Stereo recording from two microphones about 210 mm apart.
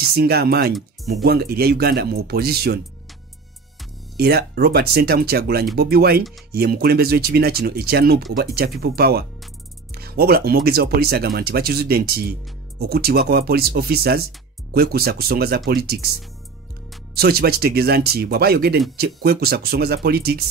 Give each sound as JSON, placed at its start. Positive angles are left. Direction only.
{"t": 0.1, "sound": "speech", "side_deg": -50}
{"t": 4.2, "sound": "speech", "side_deg": -50}
{"t": 17.1, "sound": "speech", "side_deg": -50}